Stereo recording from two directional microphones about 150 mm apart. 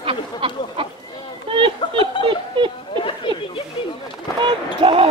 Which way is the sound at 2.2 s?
30° left (ahead or behind).